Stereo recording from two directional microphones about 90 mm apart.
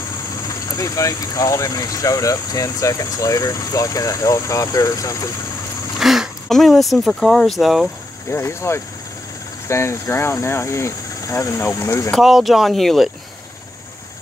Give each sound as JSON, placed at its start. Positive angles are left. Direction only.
{"t": 0.4, "sound": "speech", "side_deg": 40}
{"t": 5.9, "sound": "speech", "side_deg": -5}
{"t": 8.3, "sound": "speech", "side_deg": 30}
{"t": 12.2, "sound": "speech", "side_deg": -5}